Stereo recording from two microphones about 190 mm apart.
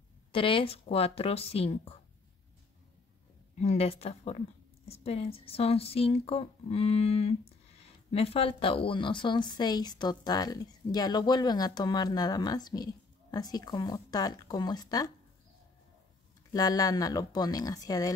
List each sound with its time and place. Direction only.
0.3 s speech: 25° left (ahead or behind)
3.5 s speech: 30° left (ahead or behind)
16.5 s speech: 20° left (ahead or behind)